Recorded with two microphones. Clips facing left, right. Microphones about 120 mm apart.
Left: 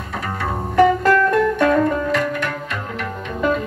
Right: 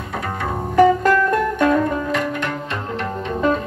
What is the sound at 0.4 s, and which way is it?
Music, 20° right (ahead or behind).